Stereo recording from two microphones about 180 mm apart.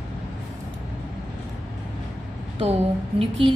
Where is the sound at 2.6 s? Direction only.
35° right (ahead or behind).